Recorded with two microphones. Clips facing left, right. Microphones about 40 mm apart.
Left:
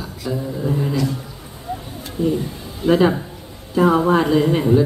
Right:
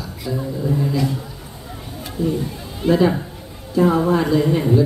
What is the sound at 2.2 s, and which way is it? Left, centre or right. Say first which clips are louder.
Speech: left 2 dB; left.